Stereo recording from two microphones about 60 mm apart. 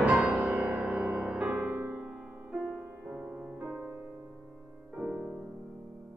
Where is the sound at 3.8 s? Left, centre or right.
Right.